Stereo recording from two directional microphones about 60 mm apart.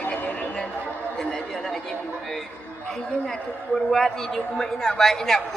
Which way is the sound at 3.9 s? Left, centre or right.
Centre.